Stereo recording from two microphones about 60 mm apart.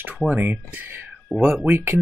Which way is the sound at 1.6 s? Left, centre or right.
Right.